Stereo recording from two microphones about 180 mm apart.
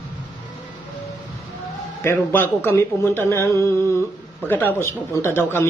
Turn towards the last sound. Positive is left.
turn(degrees=15)  # may be behind; listen again after turning